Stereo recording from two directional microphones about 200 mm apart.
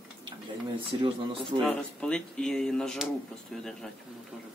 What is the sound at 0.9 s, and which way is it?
Speech, 25° right (ahead or behind).